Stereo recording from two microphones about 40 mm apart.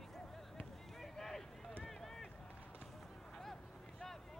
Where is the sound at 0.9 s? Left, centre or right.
Centre.